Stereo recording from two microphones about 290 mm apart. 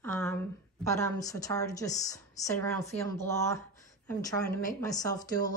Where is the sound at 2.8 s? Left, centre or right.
Left.